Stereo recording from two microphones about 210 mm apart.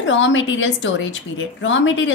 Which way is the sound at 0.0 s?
65° left (ahead or behind).